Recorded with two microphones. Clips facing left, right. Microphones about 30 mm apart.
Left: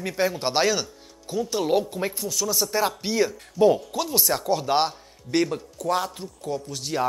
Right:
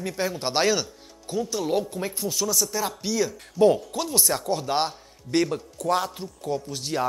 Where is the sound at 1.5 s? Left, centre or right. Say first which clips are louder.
Left 4 dB; centre.